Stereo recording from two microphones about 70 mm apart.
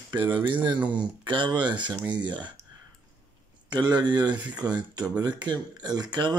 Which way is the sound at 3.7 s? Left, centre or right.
Right.